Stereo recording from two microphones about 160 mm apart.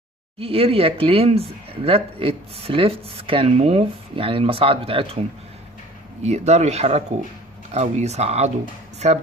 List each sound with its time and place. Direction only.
0.4 s speech: 35° right (ahead or behind)
6.2 s speech: 45° right (ahead or behind)